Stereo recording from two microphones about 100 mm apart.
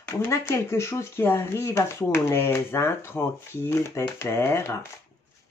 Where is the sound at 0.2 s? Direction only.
25° left (ahead or behind).